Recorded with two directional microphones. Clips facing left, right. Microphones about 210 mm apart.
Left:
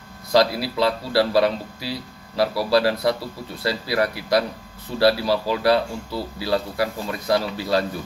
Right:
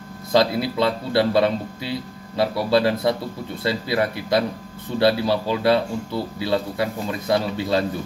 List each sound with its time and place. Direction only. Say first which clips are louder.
0.3 s a man's voice: even; 25° right (ahead or behind)